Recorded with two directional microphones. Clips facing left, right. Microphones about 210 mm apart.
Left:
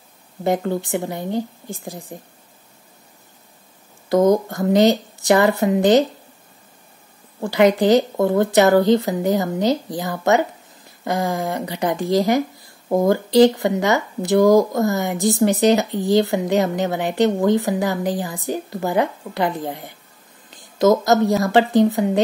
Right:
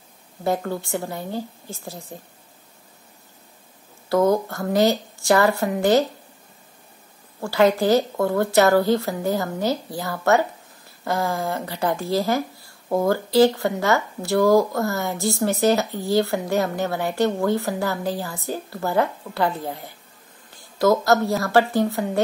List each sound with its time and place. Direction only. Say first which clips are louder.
0.4 s a woman's voice: left 4 dB; 20° left (ahead or behind)
4.1 s a woman's voice: left 3 dB; 20° left (ahead or behind)
7.3 s a woman's voice: left 3 dB; 20° left (ahead or behind)
20.4 s a sound: left 3 dB; 20° left (ahead or behind)
21.5 s a woman's voice: left 2 dB; 15° left (ahead or behind)